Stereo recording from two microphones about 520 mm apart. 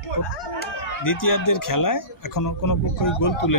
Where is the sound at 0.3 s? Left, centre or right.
Left.